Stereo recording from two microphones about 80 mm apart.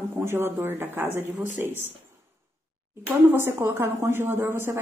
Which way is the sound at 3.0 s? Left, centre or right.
Right.